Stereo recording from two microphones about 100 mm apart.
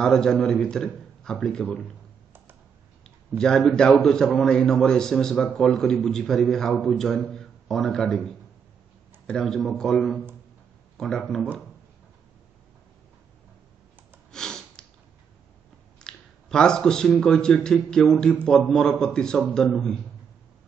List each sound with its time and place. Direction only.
0.0 s a man's voice: 5° left (ahead or behind)
3.3 s a man's voice: 5° left (ahead or behind)
14.3 s sniff: 5° left (ahead or behind)
16.0 s a man's voice: 5° left (ahead or behind)